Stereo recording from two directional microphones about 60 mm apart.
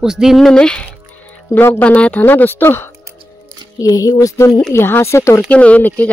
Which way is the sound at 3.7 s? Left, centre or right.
Left.